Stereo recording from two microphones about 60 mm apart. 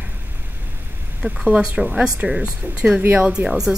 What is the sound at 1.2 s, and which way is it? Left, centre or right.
Speech, right.